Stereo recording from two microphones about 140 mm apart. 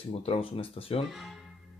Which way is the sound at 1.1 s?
Centre (ahead or behind).